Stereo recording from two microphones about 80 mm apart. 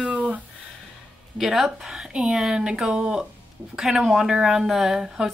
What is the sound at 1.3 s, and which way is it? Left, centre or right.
Speech, centre.